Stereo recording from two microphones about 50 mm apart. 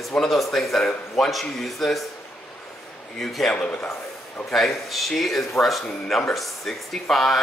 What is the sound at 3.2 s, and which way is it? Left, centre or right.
Speech, centre.